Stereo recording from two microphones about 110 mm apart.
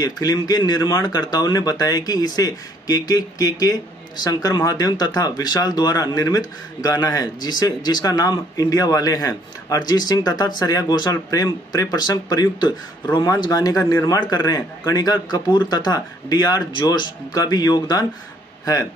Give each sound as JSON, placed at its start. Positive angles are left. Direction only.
{"t": 0.0, "sound": "speech", "side_deg": 35}